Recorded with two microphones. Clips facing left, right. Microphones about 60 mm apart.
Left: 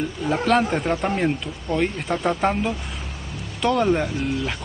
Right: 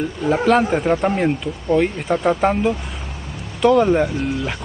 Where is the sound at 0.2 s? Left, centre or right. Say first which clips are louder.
Right 4 dB; centre.